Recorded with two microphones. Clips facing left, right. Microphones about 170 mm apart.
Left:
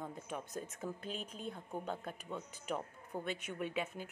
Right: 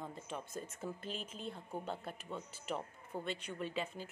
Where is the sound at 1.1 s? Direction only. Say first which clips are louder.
Left 1 dB; 45° left (ahead or behind).